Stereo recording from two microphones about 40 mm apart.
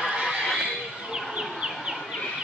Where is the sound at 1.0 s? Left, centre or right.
Centre.